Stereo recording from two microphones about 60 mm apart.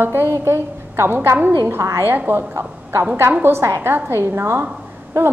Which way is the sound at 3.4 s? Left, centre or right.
Right.